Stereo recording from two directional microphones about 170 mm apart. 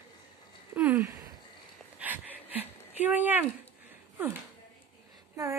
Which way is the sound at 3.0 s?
10° right (ahead or behind).